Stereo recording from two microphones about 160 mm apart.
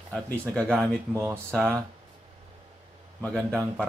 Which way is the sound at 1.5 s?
5° left (ahead or behind).